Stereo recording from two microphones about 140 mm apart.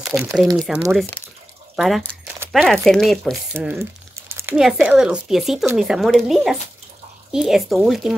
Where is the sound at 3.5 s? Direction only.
15° right (ahead or behind).